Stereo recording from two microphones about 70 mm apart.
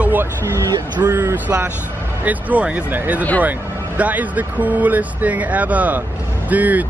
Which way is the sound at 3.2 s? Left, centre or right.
Left.